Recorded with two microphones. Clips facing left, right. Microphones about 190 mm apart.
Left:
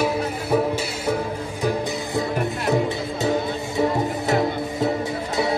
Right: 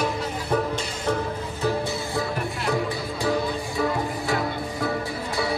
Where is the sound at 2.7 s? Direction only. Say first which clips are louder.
Left 4 dB; 20° left (ahead or behind).